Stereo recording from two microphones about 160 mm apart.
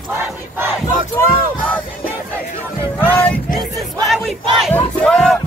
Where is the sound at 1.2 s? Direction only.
15° left (ahead or behind).